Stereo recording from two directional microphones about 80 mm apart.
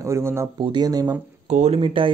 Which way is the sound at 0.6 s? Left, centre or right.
Right.